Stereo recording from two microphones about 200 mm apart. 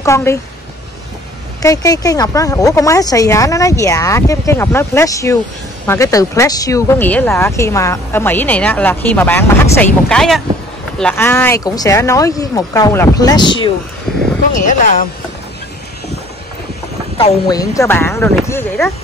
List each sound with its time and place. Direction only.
0.0 s speech: 15° left (ahead or behind)
1.6 s speech: 15° left (ahead or behind)
14.1 s a sound: centre (ahead or behind)
14.5 s speech: 40° left (ahead or behind)
17.2 s speech: 20° left (ahead or behind)